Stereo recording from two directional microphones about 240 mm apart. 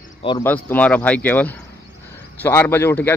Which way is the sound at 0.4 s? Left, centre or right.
Centre.